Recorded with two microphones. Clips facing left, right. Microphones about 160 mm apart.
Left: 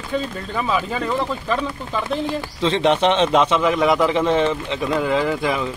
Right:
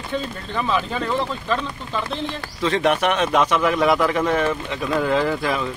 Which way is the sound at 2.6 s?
25° left (ahead or behind).